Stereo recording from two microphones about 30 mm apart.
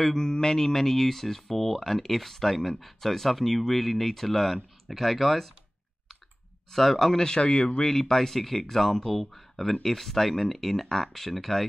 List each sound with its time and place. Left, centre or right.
0.1 s speech: left
0.6 s speech: centre
6.7 s speech: centre
7.9 s speech: centre